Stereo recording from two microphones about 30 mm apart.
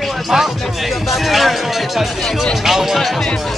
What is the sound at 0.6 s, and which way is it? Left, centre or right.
Speech, centre.